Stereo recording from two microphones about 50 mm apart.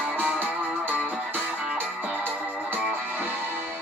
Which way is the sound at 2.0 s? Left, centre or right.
Right.